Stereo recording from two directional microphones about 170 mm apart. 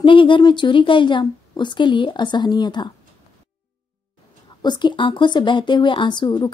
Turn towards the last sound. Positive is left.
turn(degrees=25)  # may be behind; listen again after turning